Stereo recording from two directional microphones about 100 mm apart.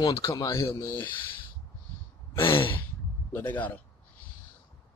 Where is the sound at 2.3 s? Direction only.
60° left (ahead or behind).